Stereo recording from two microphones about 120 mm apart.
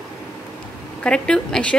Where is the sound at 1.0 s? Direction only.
10° left (ahead or behind).